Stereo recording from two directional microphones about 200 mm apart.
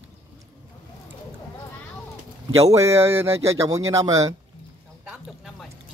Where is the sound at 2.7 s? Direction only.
15° right (ahead or behind).